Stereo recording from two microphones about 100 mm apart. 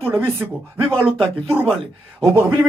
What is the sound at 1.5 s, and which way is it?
Speech, 25° right (ahead or behind).